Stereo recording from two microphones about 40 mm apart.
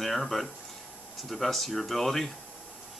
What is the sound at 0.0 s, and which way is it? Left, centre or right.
Speech, centre.